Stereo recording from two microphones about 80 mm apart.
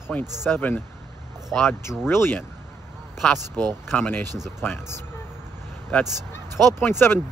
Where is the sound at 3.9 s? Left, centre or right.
Left.